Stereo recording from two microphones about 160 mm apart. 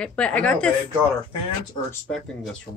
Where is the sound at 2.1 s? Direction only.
Centre (ahead or behind).